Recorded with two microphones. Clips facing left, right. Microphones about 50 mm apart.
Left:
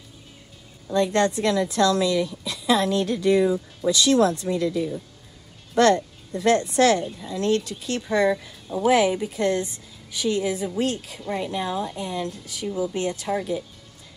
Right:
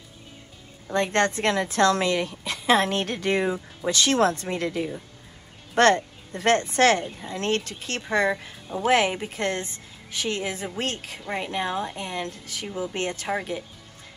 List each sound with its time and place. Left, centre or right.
0.8 s speech: right
8.3 s speech: right
13.3 s speech: right